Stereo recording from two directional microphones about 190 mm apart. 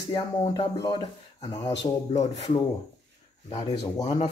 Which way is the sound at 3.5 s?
25° left (ahead or behind).